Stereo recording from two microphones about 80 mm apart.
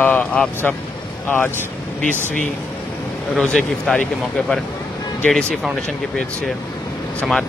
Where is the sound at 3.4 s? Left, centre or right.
Centre.